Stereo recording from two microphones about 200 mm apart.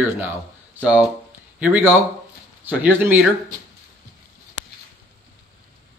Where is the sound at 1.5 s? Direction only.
10° right (ahead or behind).